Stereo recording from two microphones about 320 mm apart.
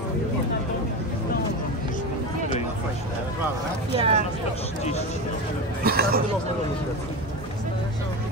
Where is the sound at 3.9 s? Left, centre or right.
Centre.